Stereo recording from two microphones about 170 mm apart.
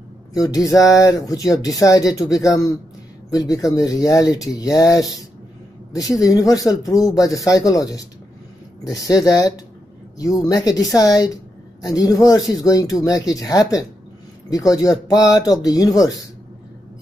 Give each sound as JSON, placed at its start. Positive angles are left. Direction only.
{"t": 0.4, "sound": "speech", "side_deg": 20}